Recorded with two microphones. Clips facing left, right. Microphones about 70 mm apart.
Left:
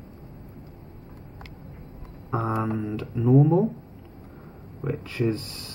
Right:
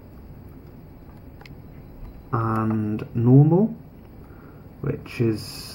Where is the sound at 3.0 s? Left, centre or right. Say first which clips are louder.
Right 3 dB; centre.